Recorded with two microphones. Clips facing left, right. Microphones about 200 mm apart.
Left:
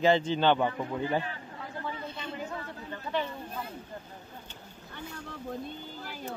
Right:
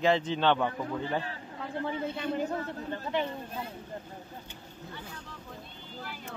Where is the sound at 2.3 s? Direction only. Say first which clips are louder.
Right 6 dB; 40° right (ahead or behind).